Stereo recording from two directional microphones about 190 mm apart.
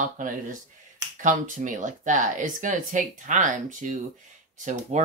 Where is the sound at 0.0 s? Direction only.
45° right (ahead or behind).